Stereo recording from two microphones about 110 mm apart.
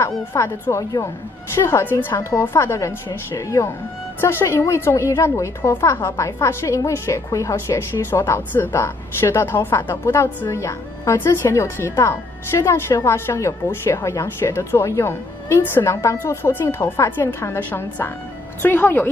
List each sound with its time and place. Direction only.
0.3 s a woman's voice: 25° left (ahead or behind)